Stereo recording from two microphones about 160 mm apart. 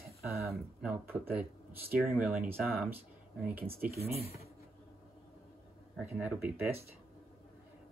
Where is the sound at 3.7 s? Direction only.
70° right (ahead or behind).